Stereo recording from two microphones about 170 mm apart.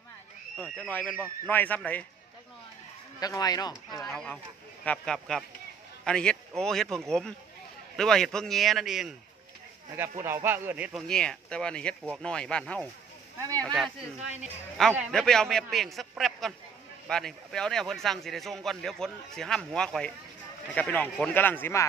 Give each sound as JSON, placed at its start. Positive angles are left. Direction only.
{"t": 0.6, "sound": "a man's voice", "side_deg": 10}
{"t": 3.2, "sound": "speech", "side_deg": 20}
{"t": 4.0, "sound": "a man's voice", "side_deg": 5}
{"t": 9.9, "sound": "speech", "side_deg": -15}
{"t": 14.4, "sound": "a man's voice", "side_deg": 0}